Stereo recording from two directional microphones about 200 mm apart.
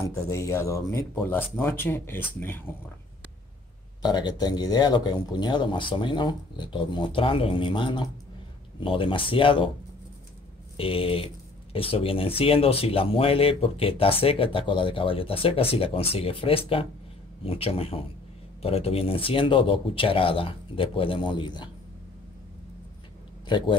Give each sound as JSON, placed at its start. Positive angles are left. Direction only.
{"t": 0.0, "sound": "speech", "side_deg": 15}
{"t": 4.0, "sound": "speech", "side_deg": 20}
{"t": 10.8, "sound": "speech", "side_deg": 25}
{"t": 23.4, "sound": "a man's voice", "side_deg": 25}